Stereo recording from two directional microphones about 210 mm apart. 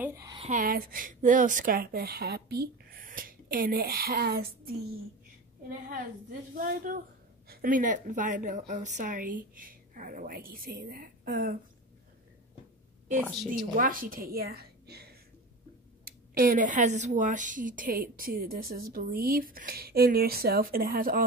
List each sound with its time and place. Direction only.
0.0 s a sound: 10° right (ahead or behind)
0.4 s a woman's voice: 35° right (ahead or behind)
13.5 s a woman's voice: 40° right (ahead or behind)
16.1 s a woman's voice: 45° right (ahead or behind)